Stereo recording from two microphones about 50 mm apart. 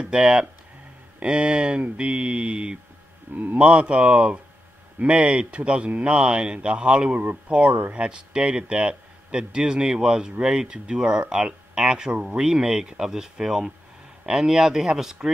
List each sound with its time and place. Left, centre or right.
0.0 s speech: centre
7.2 s speech: right; by 12.1 s centre
12.1 s speech: right
12.4 s speech: centre